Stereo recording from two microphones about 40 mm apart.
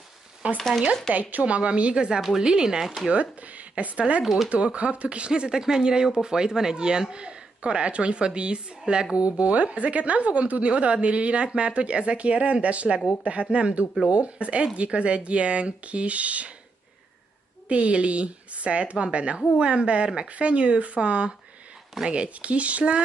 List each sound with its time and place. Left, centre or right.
0.6 s speech: centre
1.3 s a woman's voice: right
2.8 s speech: centre
3.1 s speech: right
4.2 s speech: centre
4.5 s a woman's voice: right
17.6 s a woman's voice: right